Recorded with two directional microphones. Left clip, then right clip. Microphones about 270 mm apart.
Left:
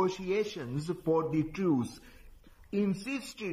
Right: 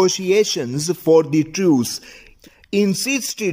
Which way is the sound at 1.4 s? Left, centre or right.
Right.